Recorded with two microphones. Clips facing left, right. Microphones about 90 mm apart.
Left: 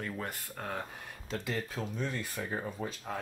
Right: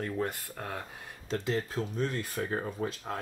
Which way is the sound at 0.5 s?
Centre (ahead or behind).